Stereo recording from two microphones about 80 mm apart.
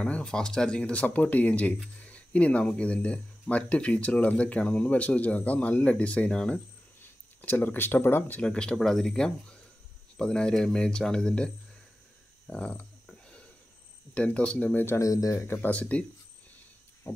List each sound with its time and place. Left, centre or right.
0.0 s speech: centre
7.4 s speech: left
8.4 s speech: centre
14.1 s speech: centre
15.0 s speech: left
15.7 s speech: centre